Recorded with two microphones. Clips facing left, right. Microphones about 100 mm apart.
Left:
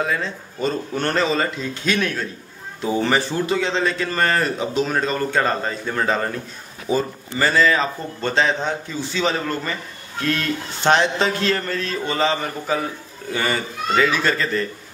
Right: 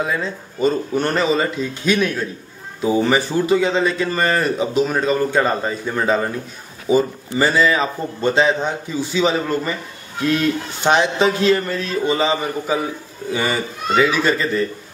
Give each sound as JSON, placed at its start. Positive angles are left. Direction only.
{"t": 0.0, "sound": "speech", "side_deg": -5}